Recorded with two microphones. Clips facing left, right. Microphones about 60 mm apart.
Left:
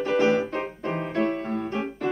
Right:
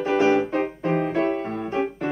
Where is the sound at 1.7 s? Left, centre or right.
Centre.